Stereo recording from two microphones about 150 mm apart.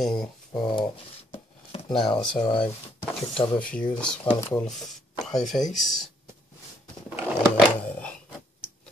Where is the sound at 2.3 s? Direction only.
35° left (ahead or behind).